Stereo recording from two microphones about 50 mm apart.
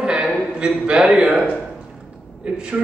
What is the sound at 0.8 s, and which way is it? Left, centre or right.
Speech, centre.